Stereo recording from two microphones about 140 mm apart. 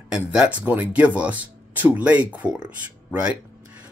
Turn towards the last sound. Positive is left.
turn(degrees=-10)  # may be behind; listen again after turning